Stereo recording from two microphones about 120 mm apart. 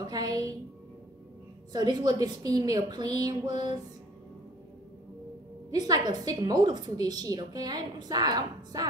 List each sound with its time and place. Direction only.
0.1 s a woman's voice: 30° right (ahead or behind)
1.7 s a woman's voice: 35° right (ahead or behind)
5.7 s a woman's voice: 35° right (ahead or behind)